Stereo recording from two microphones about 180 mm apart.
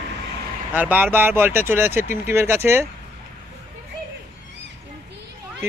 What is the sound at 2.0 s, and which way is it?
Speech, 45° left (ahead or behind).